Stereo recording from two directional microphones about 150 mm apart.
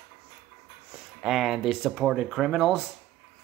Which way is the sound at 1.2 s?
Centre (ahead or behind).